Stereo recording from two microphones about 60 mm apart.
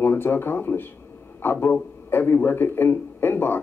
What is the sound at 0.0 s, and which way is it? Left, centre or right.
Speech, left.